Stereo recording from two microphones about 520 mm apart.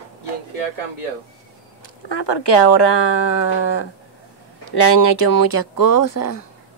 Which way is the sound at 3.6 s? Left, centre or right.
Left.